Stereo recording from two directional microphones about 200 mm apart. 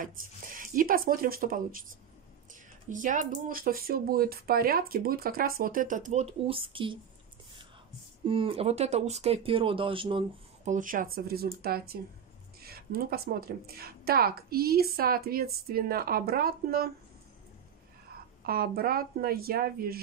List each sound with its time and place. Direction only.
0.6 s a woman's voice: 45° right (ahead or behind); by 7.0 s 25° right (ahead or behind)
8.3 s speech: 25° right (ahead or behind)
10.7 s a woman's voice: 40° right (ahead or behind)
18.4 s a woman's voice: 50° right (ahead or behind)